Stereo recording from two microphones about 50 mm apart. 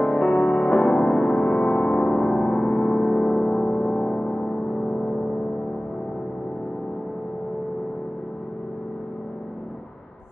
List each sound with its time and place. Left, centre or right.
0.0 s music: centre